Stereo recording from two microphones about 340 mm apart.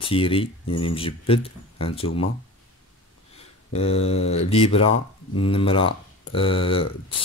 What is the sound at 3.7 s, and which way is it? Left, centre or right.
Speech, centre.